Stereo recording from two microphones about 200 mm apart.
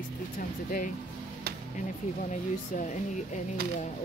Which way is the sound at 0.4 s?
45° left (ahead or behind).